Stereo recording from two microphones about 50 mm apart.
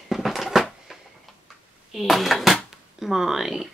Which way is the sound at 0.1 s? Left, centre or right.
Centre.